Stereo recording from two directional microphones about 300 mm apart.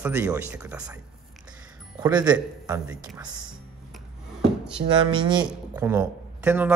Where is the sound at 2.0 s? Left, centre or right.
Centre.